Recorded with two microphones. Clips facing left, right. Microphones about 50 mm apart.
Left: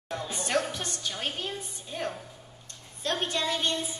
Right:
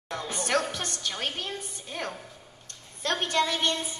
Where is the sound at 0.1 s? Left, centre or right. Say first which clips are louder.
Right 1 dB; right.